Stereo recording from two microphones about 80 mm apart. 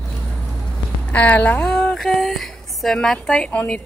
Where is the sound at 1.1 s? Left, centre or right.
Centre.